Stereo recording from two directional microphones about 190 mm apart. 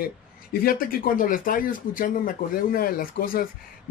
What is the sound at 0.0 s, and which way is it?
Speech, 50° left (ahead or behind).